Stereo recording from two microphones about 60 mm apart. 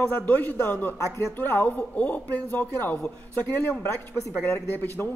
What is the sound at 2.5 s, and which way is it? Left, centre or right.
Speech, left.